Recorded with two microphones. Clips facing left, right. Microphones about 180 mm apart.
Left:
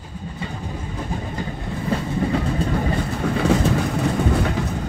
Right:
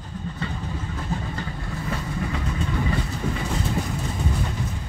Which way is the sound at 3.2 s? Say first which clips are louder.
Left 11 dB; 80° left.